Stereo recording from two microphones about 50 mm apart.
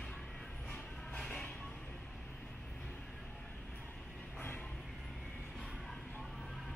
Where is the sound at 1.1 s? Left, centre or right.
Centre.